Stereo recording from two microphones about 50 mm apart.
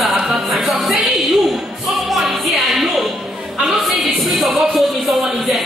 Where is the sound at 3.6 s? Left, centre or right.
Centre.